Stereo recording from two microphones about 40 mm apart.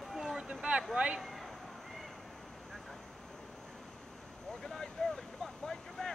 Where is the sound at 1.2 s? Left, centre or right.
Centre.